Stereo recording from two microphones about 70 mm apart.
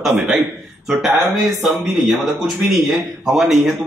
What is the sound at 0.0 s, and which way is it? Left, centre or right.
Speech, centre.